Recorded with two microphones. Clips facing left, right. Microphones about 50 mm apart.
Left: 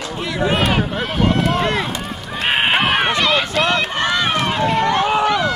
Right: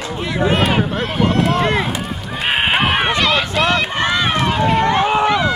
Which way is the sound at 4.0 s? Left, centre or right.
Right.